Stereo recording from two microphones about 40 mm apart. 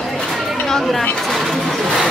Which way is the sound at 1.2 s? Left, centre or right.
Centre.